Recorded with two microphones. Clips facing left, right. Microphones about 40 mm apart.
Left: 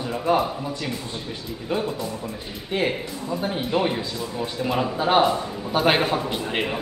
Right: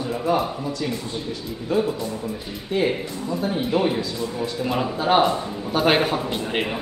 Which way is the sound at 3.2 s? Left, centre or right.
Centre.